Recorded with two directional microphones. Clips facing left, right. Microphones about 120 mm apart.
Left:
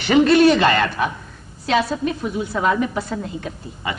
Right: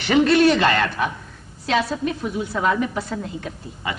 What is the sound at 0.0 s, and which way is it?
A man's voice, 10° left (ahead or behind).